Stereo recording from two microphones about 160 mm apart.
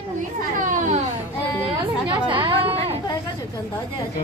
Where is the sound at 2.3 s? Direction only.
30° right (ahead or behind).